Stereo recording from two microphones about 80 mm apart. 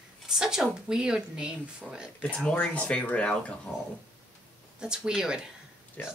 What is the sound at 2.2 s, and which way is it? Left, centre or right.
Speech, centre.